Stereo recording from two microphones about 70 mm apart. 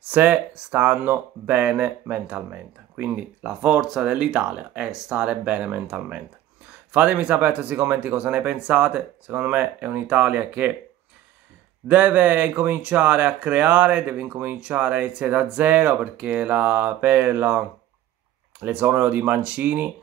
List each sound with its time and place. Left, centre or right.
0.1 s speech: right
11.9 s speech: centre